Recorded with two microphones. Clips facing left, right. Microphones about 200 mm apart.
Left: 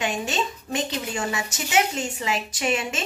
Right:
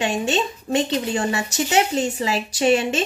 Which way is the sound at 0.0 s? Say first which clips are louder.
Right 5 dB; 30° right (ahead or behind).